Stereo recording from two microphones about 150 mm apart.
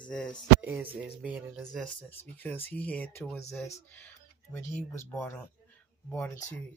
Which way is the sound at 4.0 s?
10° left (ahead or behind).